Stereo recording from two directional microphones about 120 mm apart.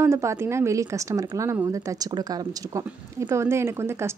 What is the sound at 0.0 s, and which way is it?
Speech, 25° right (ahead or behind).